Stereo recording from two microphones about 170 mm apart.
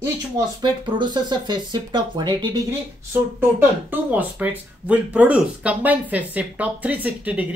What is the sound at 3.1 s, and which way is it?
Speech, 10° right (ahead or behind).